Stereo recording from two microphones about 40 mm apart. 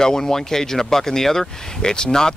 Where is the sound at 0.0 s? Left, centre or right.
Centre.